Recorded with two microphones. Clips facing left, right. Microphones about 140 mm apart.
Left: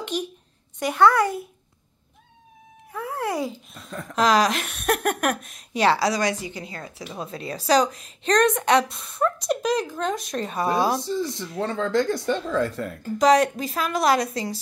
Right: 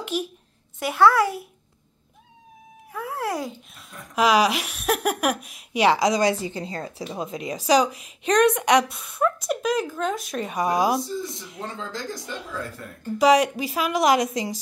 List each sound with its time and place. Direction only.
0.0 s a sound: 5° right (ahead or behind)
0.7 s a woman's voice: 5° right (ahead or behind)
2.9 s a woman's voice: centre (ahead or behind)
4.1 s speech: 10° right (ahead or behind)
11.1 s speech: 75° left (ahead or behind)
12.5 s speech: 90° left
13.2 s speech: 10° right (ahead or behind)